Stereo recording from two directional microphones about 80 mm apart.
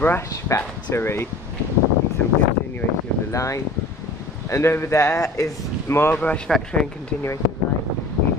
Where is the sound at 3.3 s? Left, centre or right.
Left.